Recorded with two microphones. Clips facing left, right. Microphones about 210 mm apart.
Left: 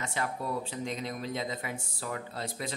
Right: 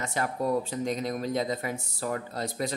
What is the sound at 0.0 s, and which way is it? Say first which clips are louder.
Speech: right 5 dB; 40° right (ahead or behind).